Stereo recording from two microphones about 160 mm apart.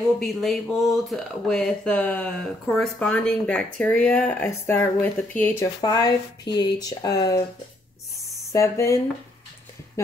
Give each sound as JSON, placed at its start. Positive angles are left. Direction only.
{"t": 0.2, "sound": "speech", "side_deg": 0}
{"t": 5.8, "sound": "speech", "side_deg": 25}
{"t": 8.5, "sound": "speech", "side_deg": 20}